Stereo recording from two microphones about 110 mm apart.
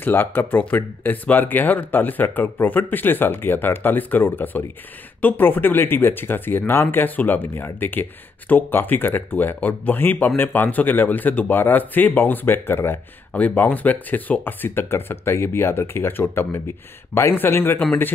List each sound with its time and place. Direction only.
0.0 s a man's voice: 20° left (ahead or behind)